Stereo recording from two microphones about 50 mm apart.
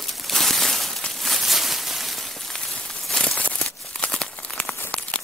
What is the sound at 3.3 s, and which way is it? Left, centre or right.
Crumpling, left.